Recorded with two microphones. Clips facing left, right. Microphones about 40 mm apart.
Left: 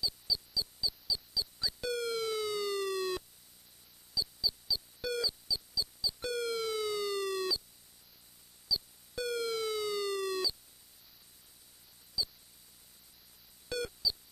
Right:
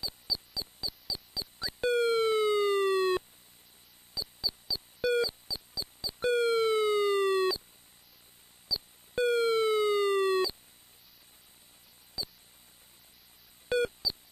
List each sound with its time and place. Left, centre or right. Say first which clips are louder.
0.3 s mouse: right 1 dB; right
1.1 s siren: left 2 dB; right
4.1 s mouse: left 2 dB; right
5.1 s busy signal: right 3 dB; right
9.1 s busy signal: right 8 dB; right
12.2 s mouse: left 3 dB; right
13.7 s a sound: right 7 dB; right